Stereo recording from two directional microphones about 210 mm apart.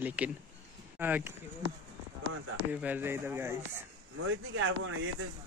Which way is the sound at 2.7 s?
10° right (ahead or behind).